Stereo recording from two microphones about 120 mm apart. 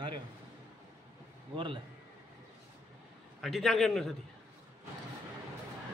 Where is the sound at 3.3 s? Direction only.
Centre (ahead or behind).